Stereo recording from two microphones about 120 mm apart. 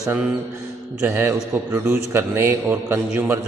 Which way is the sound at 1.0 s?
20° right (ahead or behind).